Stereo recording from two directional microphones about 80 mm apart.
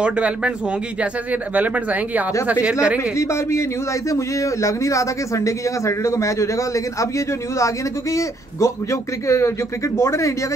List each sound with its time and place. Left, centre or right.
0.0 s speech: centre
3.0 s a man's voice: left